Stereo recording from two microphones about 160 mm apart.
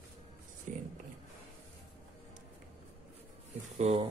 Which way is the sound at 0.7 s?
55° right (ahead or behind).